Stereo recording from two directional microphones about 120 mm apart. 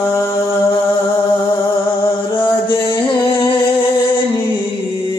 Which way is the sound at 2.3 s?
45° left (ahead or behind).